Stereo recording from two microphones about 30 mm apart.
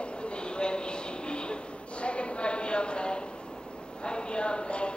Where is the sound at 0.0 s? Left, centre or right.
Left.